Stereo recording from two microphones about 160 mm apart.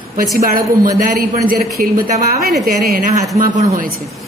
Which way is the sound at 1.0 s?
55° right (ahead or behind).